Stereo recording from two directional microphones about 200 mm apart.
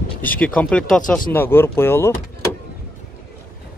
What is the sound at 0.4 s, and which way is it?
A man's voice, 5° left (ahead or behind).